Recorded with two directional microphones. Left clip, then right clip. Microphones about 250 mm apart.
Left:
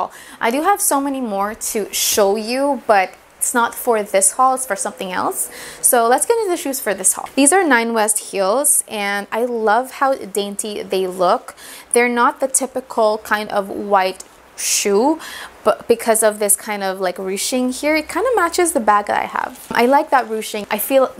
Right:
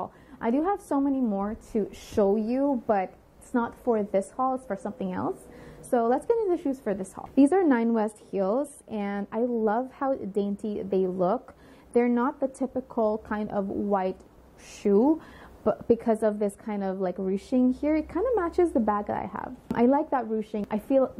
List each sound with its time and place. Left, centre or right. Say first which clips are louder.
0.4 s a woman's voice: left 11 dB; centre
12.6 s speech: left 9 dB; left
13.0 s a woman's voice: left 12 dB; centre
13.7 s speech: left 7 dB; left
14.6 s a woman's voice: left 8 dB; centre